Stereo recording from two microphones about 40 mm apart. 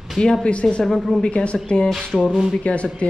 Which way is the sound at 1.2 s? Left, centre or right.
Left.